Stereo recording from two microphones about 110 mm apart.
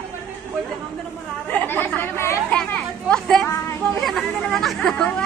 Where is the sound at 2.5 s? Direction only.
10° left (ahead or behind).